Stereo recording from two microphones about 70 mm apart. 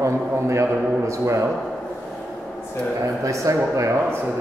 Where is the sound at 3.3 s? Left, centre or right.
Right.